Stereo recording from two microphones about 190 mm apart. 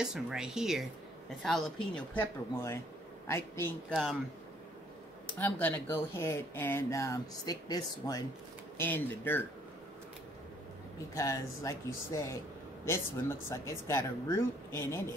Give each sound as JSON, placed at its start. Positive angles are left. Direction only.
{"t": 0.0, "sound": "speech", "side_deg": -5}
{"t": 3.9, "sound": "speech", "side_deg": 0}
{"t": 5.4, "sound": "speech", "side_deg": 10}
{"t": 11.1, "sound": "speech", "side_deg": 15}